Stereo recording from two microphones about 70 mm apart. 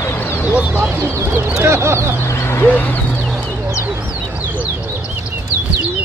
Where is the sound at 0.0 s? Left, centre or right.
Left.